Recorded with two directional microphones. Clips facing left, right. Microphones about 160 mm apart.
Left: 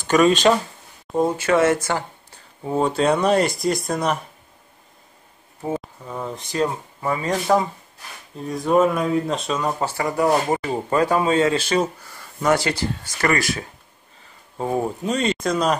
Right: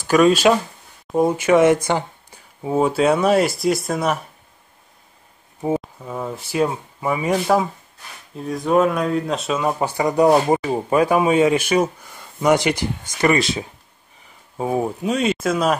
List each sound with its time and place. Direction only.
0.0 s speech: 5° right (ahead or behind)
5.8 s speech: 5° right (ahead or behind); by 13.7 s 20° right (ahead or behind)
14.2 s speech: 5° right (ahead or behind)